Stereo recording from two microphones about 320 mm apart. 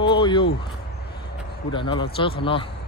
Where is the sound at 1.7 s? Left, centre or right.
Centre.